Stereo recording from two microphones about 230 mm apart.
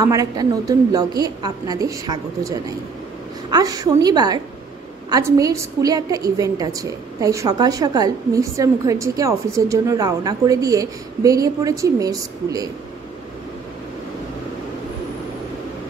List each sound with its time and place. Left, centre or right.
0.0 s a woman's voice: centre